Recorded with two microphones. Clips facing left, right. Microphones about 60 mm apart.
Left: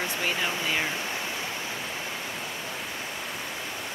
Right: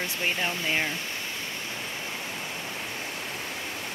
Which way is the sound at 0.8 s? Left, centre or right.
Centre.